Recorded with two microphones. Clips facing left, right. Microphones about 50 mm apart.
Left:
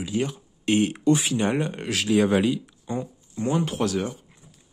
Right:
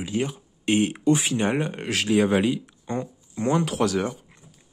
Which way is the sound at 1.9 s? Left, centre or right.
Right.